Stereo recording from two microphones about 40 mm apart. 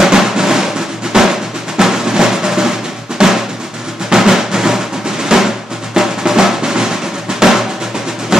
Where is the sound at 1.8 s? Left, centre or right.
Centre.